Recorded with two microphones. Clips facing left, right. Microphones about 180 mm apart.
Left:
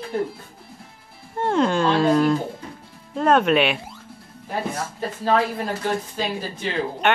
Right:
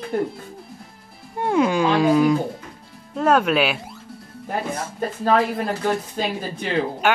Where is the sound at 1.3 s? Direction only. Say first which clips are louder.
Right 1 dB; 10° right (ahead or behind).